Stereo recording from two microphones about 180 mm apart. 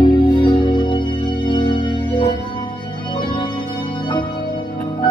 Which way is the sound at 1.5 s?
25° left (ahead or behind).